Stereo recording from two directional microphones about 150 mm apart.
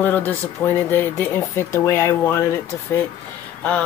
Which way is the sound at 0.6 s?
15° left (ahead or behind).